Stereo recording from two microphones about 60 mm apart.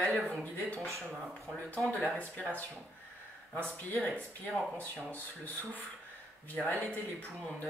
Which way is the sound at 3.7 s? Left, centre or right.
Left.